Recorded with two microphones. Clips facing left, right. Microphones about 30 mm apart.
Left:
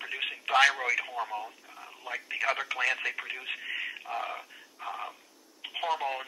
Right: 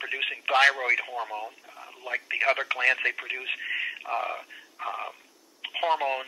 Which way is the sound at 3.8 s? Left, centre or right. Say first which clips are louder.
Right 5 dB; centre.